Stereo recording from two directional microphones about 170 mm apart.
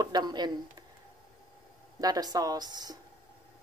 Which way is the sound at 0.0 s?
25° right (ahead or behind).